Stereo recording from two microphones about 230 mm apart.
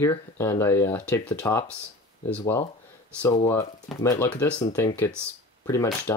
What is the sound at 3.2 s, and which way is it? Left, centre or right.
Speech, left.